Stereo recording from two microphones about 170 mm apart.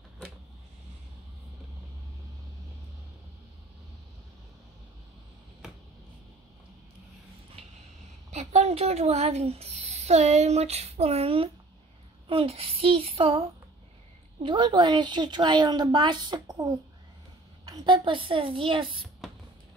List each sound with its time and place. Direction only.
8.3 s a woman's voice: 40° right (ahead or behind)